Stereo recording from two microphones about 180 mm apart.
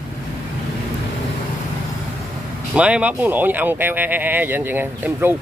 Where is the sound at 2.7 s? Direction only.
5° right (ahead or behind).